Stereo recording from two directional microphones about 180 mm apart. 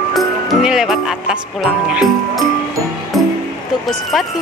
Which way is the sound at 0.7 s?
Centre (ahead or behind).